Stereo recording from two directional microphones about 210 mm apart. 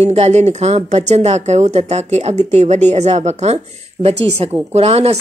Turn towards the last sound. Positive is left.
turn(degrees=-30)  # may be behind; listen again after turning